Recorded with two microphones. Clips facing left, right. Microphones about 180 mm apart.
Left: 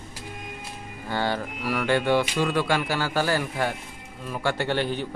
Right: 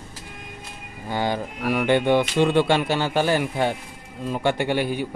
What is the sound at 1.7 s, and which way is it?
Speech, 20° right (ahead or behind).